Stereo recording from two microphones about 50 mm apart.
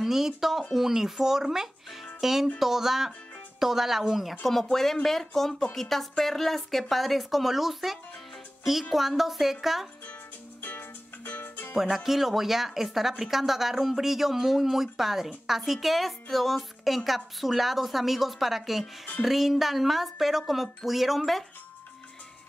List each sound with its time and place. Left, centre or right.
0.0 s speech: centre
2.1 s music: centre
2.6 s speech: centre
10.6 s music: left
11.7 s speech: centre